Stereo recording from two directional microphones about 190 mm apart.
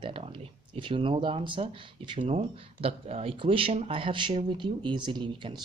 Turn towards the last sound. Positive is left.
turn(degrees=-25)  # may be behind; listen again after turning